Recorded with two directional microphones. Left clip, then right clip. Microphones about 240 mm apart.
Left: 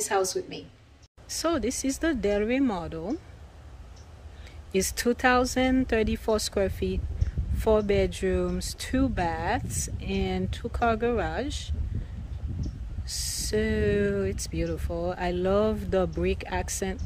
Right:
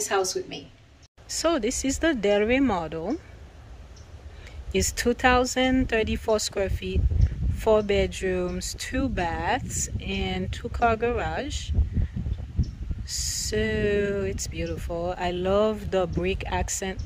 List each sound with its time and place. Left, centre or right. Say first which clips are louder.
0.0 s speech: right 1 dB; centre
4.7 s speech: right 1 dB; centre
13.0 s speech: right 3 dB; centre